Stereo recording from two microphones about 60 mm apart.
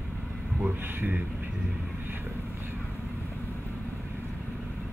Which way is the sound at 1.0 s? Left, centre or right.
Right.